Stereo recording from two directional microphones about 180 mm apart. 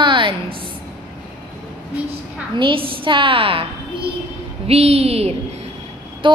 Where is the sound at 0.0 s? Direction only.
25° right (ahead or behind).